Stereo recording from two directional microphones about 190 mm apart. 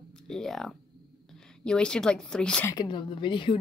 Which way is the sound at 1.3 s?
5° left (ahead or behind).